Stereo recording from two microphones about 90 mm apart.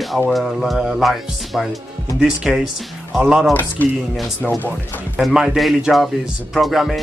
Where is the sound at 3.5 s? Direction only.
20° left (ahead or behind).